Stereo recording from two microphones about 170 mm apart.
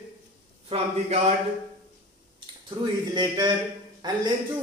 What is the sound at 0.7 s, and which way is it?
Speech, 40° right (ahead or behind).